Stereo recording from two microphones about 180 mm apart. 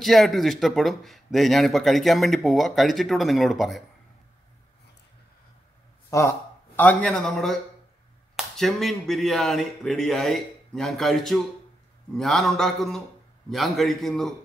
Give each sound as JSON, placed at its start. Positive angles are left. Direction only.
{"t": 0.0, "sound": "speech", "side_deg": 0}
{"t": 6.0, "sound": "speech", "side_deg": 15}